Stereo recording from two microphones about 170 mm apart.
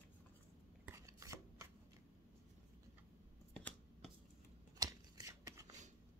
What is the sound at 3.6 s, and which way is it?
Scissors, 10° left (ahead or behind).